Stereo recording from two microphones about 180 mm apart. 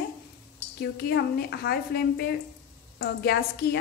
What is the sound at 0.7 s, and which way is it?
A woman's voice, 60° left (ahead or behind).